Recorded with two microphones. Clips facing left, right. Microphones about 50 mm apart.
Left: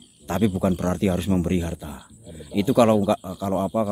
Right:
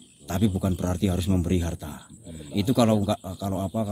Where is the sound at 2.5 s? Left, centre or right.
Left.